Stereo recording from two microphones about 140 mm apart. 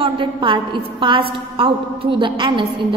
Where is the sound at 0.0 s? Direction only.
40° right (ahead or behind).